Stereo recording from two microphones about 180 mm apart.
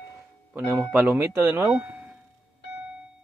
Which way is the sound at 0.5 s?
10° right (ahead or behind).